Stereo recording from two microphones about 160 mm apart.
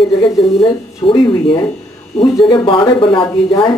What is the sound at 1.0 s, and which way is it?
Speech, 30° left (ahead or behind).